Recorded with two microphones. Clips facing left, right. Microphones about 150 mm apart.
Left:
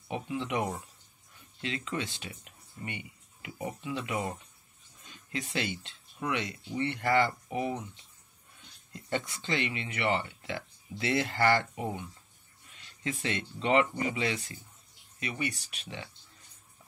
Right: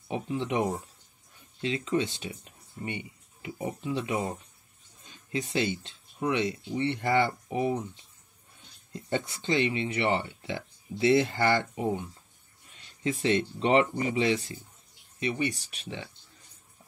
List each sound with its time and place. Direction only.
0.1 s speech: 25° right (ahead or behind)
8.9 s speech: 30° right (ahead or behind)
12.7 s speech: 35° right (ahead or behind)